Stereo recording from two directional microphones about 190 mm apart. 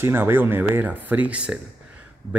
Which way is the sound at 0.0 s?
10° right (ahead or behind).